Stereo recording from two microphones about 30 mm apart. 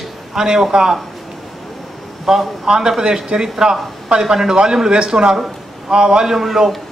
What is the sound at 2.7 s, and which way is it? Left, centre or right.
Speech, right.